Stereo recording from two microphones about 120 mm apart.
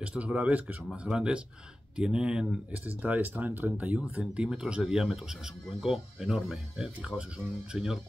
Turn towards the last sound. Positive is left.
turn(degrees=-5)  # may be behind; listen again after turning